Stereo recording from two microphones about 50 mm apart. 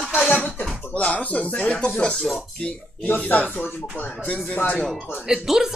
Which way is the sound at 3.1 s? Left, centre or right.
Left.